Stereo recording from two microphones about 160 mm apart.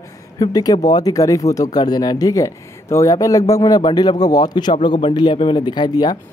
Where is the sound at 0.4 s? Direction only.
25° left (ahead or behind).